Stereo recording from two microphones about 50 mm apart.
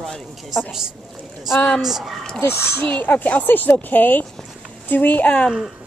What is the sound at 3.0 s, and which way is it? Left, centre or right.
Speech, left.